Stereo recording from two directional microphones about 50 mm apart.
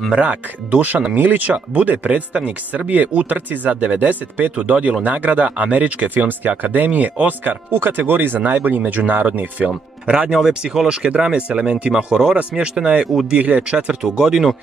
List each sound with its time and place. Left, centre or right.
0.2 s speech: right
10.0 s speech: centre